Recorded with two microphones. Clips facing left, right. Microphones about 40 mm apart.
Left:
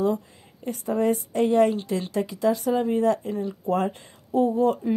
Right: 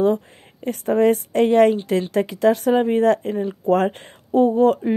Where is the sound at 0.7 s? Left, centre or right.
Right.